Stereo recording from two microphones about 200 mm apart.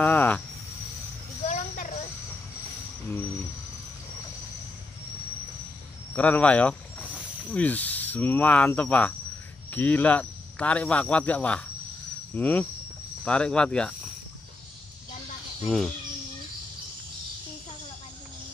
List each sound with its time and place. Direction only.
0.0 s cricket: 10° left (ahead or behind)
1.5 s a sound: 35° left (ahead or behind)
6.1 s speech: 5° left (ahead or behind)
15.6 s speech: centre (ahead or behind)